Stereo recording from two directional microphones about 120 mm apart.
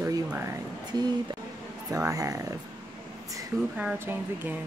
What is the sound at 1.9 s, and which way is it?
Speech, 30° right (ahead or behind).